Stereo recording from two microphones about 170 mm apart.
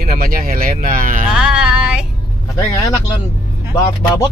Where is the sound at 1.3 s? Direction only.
5° right (ahead or behind).